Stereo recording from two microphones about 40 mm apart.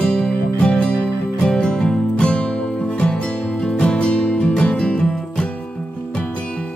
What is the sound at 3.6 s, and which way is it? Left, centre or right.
Music, left.